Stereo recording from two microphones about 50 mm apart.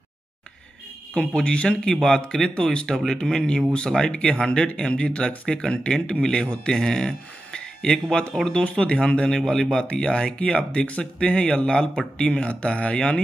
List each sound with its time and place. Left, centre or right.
1.1 s speech: left
1.9 s speech: centre